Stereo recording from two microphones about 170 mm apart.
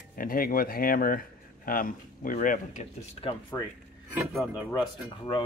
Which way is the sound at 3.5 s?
20° left (ahead or behind).